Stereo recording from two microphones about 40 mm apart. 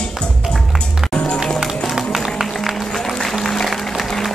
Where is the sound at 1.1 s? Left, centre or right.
Left.